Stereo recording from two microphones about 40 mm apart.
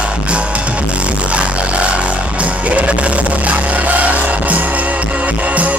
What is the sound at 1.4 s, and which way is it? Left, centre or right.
Music, right.